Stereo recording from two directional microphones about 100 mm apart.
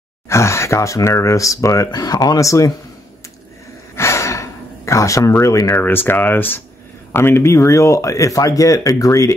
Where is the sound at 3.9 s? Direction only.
30° left (ahead or behind).